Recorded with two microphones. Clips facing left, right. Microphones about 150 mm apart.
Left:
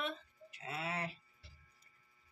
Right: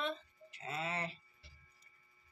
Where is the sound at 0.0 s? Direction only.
10° left (ahead or behind).